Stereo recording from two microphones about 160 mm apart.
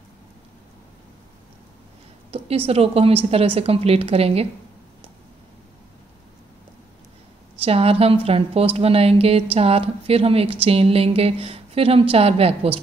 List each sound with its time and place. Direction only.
2.3 s speech: 35° right (ahead or behind)
7.6 s speech: 35° right (ahead or behind)